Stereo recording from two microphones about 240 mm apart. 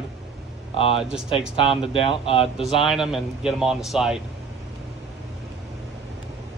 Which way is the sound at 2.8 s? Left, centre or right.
Centre.